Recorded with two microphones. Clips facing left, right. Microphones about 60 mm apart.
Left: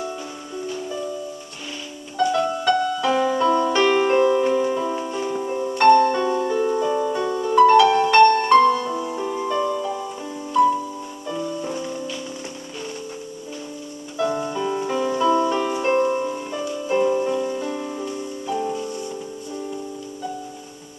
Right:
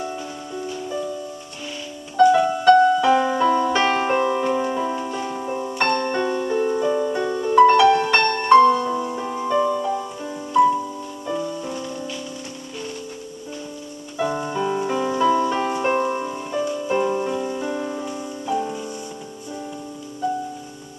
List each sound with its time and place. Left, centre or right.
2.1 s music: centre
7.4 s music: centre
7.9 s music: centre
8.5 s music: right
8.8 s music: centre
11.4 s music: centre
14.1 s music: centre